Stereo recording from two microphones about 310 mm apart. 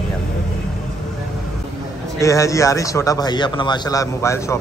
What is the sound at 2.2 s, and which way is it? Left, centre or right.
Speech, centre.